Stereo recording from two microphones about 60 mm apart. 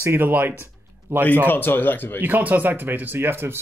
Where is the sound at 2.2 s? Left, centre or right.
Right.